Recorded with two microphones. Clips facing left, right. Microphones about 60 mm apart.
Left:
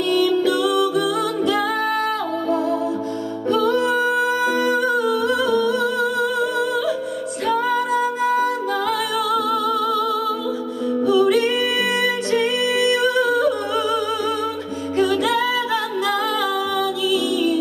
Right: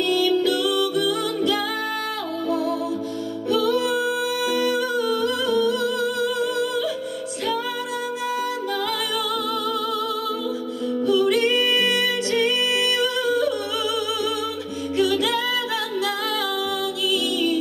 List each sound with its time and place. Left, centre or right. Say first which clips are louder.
0.3 s music: left 2 dB; left
3.4 s music: left 3 dB; left
6.1 s music: left 3 dB; left
9.3 s music: left 5 dB; centre
11.1 s music: left 2 dB; centre
12.8 s music: left 5 dB; left
13.5 s music: left 4 dB; left
15.2 s music: left 4 dB; centre
17.1 s music: left 2 dB; left